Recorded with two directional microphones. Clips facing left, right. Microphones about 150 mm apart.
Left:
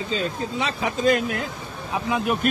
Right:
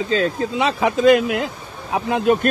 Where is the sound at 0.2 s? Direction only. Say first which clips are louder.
Right 6 dB; 90° right.